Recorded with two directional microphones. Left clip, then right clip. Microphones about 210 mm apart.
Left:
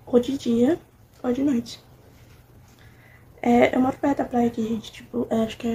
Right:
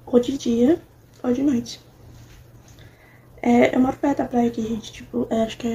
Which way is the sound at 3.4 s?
5° left (ahead or behind).